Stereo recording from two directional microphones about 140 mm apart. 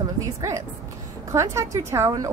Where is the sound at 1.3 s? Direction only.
25° right (ahead or behind).